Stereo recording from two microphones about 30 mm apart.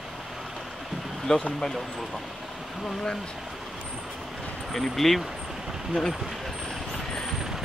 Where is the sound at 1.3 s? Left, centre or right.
Left.